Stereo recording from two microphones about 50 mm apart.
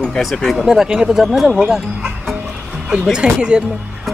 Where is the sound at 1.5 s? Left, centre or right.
Centre.